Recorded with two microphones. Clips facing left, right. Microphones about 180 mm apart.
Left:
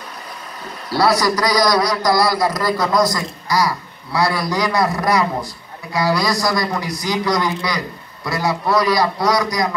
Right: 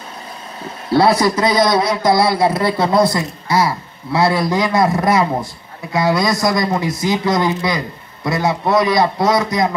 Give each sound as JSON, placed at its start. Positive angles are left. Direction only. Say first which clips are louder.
{"t": 0.8, "sound": "a man's voice", "louder": "right 3 dB", "side_deg": -25}